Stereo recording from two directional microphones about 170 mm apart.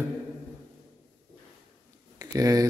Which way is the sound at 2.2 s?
20° right (ahead or behind).